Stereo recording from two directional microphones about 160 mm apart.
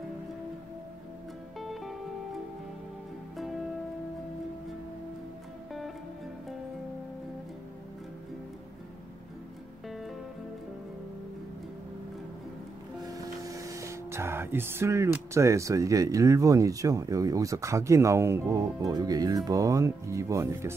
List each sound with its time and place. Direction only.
1.6 s music: centre (ahead or behind)
13.0 s speech: 20° right (ahead or behind)